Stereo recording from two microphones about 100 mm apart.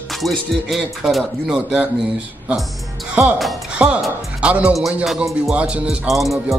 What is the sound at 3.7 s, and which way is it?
Speech, 10° right (ahead or behind).